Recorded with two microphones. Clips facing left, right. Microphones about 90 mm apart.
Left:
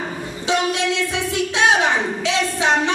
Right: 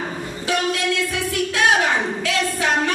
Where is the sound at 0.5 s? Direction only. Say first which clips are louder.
Left 2 dB; 20° left (ahead or behind).